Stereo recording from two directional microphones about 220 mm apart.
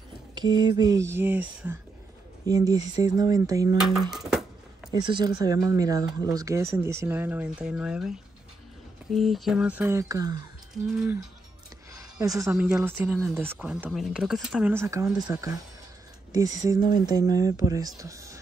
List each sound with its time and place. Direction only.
0.3 s speech: 20° right (ahead or behind)
4.1 s music: centre (ahead or behind)
4.9 s speech: 20° right (ahead or behind)
11.9 s a sound: 15° right (ahead or behind)
12.5 s speech: 5° right (ahead or behind)
14.7 s speech: 10° right (ahead or behind)
17.0 s speech: 15° right (ahead or behind)